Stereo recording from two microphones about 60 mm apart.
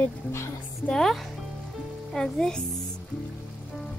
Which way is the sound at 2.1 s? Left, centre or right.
Centre.